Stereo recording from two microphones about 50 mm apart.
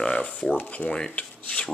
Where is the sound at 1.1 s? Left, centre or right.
Left.